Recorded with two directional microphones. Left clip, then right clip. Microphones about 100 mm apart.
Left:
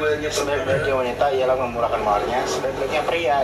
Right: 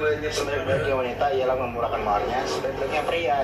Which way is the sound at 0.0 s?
35° left (ahead or behind).